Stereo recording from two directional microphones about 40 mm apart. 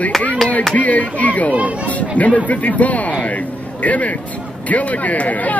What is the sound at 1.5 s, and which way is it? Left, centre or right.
Speech, right.